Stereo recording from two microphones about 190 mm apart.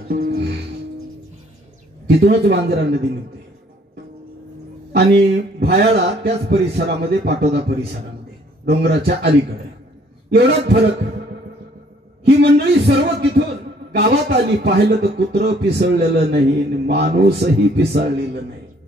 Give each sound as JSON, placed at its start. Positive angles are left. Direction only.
{"t": 0.1, "sound": "music", "side_deg": -50}
{"t": 2.0, "sound": "a man's voice", "side_deg": -60}
{"t": 4.9, "sound": "a man's voice", "side_deg": -60}
{"t": 10.3, "sound": "a man's voice", "side_deg": -60}
{"t": 12.3, "sound": "a man's voice", "side_deg": -60}